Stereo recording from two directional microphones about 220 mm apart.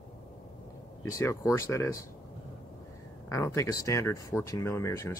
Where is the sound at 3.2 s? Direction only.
15° left (ahead or behind).